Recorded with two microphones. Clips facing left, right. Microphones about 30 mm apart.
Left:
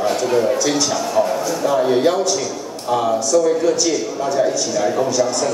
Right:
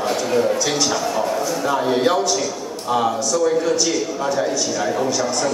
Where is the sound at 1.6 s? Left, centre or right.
Centre.